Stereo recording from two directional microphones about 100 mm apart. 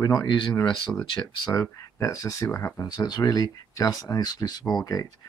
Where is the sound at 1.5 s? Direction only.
30° left (ahead or behind).